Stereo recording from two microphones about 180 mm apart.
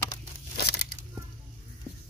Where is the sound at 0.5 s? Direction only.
65° left (ahead or behind).